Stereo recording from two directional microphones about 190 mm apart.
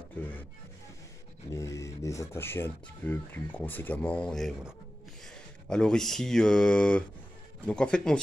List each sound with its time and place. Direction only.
0.1 s speech: 10° left (ahead or behind)
1.5 s speech: 15° left (ahead or behind)